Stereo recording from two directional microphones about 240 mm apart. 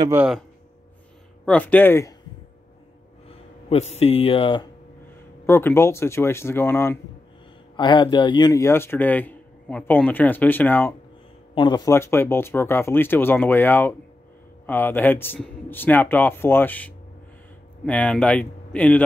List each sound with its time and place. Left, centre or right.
0.0 s speech: centre
1.4 s speech: centre
3.6 s speech: left
5.5 s speech: centre
11.5 s speech: centre